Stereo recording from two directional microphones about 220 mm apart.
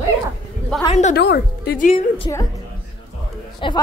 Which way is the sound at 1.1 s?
45° left (ahead or behind).